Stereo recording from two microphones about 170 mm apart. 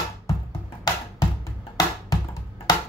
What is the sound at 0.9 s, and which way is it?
Music, 20° left (ahead or behind).